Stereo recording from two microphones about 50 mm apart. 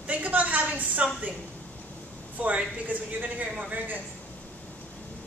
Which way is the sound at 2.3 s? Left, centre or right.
Right.